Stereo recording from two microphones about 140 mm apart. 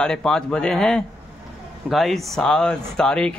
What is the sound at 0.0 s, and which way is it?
A man's voice, 5° left (ahead or behind).